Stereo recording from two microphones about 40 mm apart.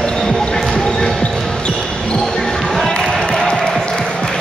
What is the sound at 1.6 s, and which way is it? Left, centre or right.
Basketball bounce, left.